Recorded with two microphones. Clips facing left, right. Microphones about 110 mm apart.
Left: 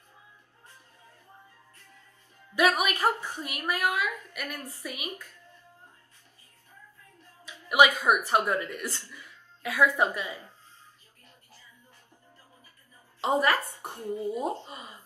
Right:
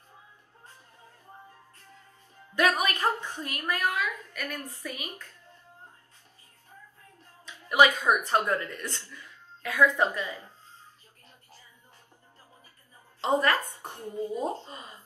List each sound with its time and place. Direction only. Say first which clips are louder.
2.5 s a woman's voice: left 1 dB; 15° left (ahead or behind)
7.4 s a sound: even; 15° left (ahead or behind)
8.3 s a woman's voice: left 1 dB; 15° left (ahead or behind)
13.2 s a woman's voice: even; 15° left (ahead or behind)